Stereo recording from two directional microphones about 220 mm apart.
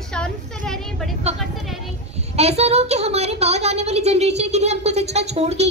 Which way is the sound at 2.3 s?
30° right (ahead or behind).